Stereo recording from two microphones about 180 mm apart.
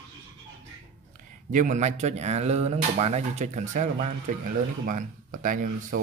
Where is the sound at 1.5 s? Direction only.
45° right (ahead or behind).